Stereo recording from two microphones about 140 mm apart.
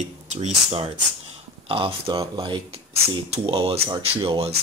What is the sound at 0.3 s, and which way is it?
Speech, 50° right (ahead or behind).